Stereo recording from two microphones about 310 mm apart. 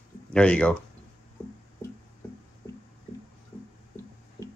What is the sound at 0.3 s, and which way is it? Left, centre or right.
Speech, centre.